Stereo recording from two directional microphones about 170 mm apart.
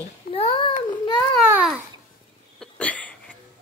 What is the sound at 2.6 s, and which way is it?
Hiccup, 5° left (ahead or behind).